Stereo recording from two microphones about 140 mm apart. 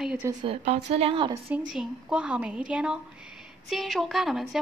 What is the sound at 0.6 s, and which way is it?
Speech, 50° right (ahead or behind).